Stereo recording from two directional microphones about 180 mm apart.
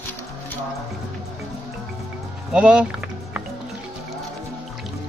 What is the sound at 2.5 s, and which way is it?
Music, 5° right (ahead or behind).